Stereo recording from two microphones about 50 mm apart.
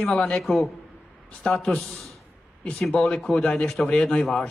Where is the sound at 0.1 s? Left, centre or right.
Centre.